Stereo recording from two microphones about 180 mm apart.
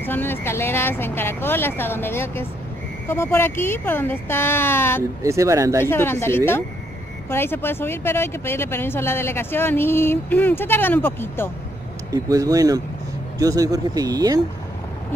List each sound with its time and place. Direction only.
0.0 s speech: 10° left (ahead or behind)
5.2 s speech: 15° right (ahead or behind)
5.9 s speech: 15° left (ahead or behind)
12.1 s speech: 20° right (ahead or behind)